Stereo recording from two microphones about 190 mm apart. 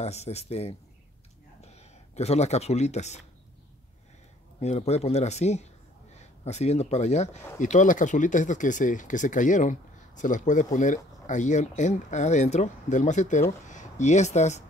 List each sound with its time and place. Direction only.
0.0 s speech: 35° left (ahead or behind)
4.6 s speech: 35° left (ahead or behind)